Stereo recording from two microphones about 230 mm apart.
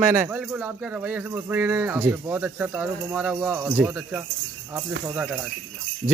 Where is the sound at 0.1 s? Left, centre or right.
Centre.